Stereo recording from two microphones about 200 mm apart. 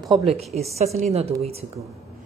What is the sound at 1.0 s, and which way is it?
Speech, 30° right (ahead or behind).